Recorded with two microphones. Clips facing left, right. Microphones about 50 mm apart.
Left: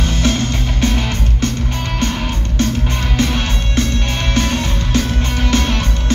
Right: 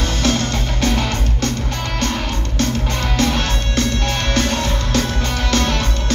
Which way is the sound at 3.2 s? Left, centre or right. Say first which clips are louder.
Even; centre.